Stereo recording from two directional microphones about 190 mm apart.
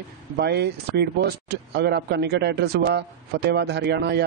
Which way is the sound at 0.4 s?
60° right (ahead or behind).